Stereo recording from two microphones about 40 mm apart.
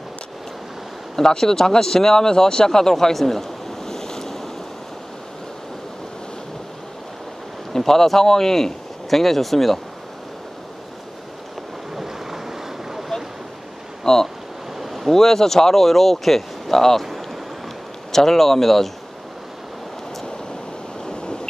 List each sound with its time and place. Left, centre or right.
1.1 s speech: centre
7.7 s speech: centre
11.9 s boat: centre
14.0 s speech: centre
14.8 s ocean: centre
15.1 s speech: centre
18.1 s speech: centre
21.0 s a sound: centre